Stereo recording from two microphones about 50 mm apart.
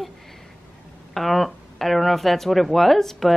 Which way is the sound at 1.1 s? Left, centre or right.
Centre.